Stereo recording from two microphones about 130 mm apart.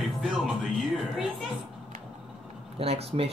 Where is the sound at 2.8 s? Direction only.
50° right (ahead or behind).